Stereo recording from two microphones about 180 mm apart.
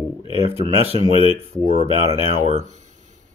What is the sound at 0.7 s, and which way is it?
Speech, 35° right (ahead or behind).